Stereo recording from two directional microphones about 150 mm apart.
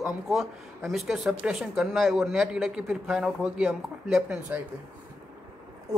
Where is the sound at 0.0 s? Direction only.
Centre (ahead or behind).